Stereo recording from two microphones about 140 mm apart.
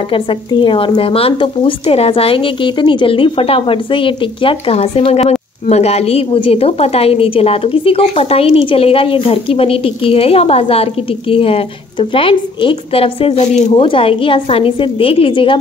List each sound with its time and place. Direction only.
0.1 s speech: 35° left (ahead or behind)